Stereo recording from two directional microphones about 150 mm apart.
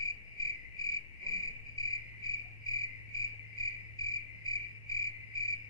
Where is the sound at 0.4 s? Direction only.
25° left (ahead or behind).